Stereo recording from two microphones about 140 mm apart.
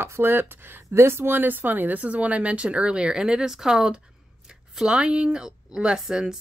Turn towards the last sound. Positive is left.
turn(degrees=-5)  # may be behind; listen again after turning